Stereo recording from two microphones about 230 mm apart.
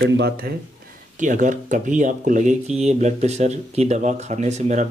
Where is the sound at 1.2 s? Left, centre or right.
Right.